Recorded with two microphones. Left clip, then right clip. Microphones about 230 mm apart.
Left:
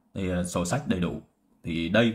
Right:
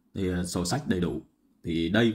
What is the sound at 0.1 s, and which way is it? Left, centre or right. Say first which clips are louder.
Speech: left 1 dB; centre.